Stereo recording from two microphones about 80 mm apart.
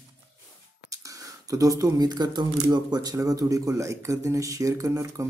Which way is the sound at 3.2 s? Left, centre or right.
Right.